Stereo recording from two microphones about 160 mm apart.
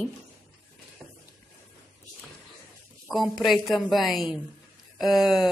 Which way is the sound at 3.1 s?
Centre (ahead or behind).